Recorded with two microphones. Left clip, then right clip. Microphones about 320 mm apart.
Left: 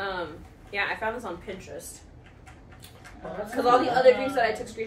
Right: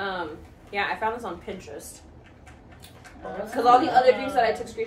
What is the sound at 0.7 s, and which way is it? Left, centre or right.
Speech, centre.